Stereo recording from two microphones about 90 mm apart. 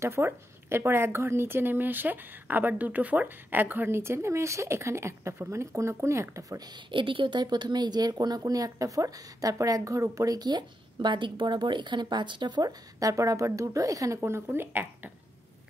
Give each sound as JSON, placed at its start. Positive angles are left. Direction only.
{"t": 0.0, "sound": "a woman's voice", "side_deg": -30}
{"t": 6.9, "sound": "speech", "side_deg": -70}
{"t": 13.0, "sound": "speech", "side_deg": -35}